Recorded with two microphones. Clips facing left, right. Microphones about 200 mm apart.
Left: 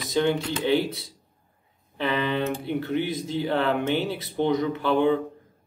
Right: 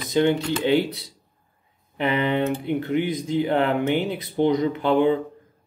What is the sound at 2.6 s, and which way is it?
Speech, 15° right (ahead or behind).